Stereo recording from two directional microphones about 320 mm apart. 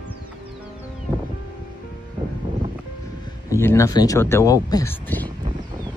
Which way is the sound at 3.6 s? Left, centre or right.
Centre.